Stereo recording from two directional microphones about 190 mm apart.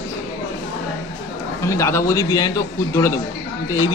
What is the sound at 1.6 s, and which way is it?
A man's voice, 15° left (ahead or behind).